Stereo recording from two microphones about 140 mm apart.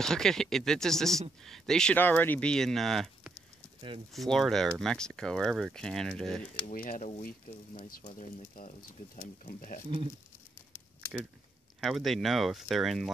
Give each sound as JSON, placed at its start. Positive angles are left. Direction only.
{"t": 0.0, "sound": "speech", "side_deg": 5}
{"t": 6.6, "sound": "speech", "side_deg": 80}
{"t": 8.5, "sound": "speech", "side_deg": 65}
{"t": 11.8, "sound": "speech", "side_deg": 0}